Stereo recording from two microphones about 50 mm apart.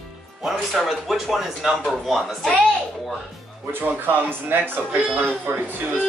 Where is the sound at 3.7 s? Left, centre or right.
Right.